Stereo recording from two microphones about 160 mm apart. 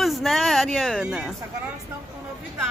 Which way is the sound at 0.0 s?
Centre (ahead or behind).